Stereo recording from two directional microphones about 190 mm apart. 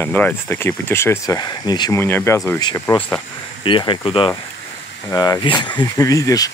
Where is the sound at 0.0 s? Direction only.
10° left (ahead or behind).